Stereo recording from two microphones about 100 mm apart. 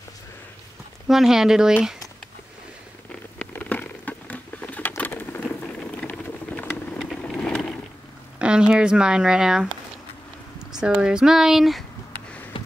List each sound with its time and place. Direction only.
1.0 s speech: 5° right (ahead or behind)
3.3 s a sound: 15° left (ahead or behind)
7.0 s vehicle: 5° left (ahead or behind)
8.4 s speech: 10° right (ahead or behind)
10.7 s speech: 10° right (ahead or behind)
12.6 s a sound: 55° left (ahead or behind)